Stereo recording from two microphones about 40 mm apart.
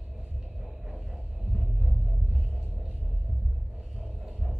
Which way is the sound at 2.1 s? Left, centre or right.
Right.